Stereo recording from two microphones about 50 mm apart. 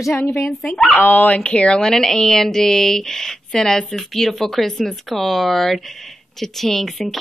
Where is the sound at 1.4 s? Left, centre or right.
Left.